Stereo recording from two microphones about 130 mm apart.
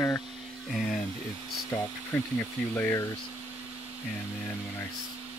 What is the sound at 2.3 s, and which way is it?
Speech, 15° left (ahead or behind).